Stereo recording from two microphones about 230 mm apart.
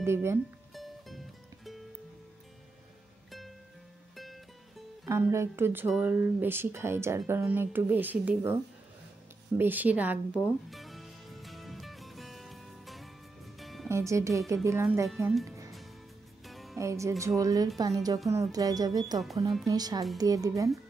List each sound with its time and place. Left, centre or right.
0.0 s speech: centre
0.7 s music: centre
3.3 s music: centre
5.0 s speech: centre
9.6 s music: centre
13.8 s speech: centre
15.0 s speech: centre
16.4 s music: centre
16.7 s speech: centre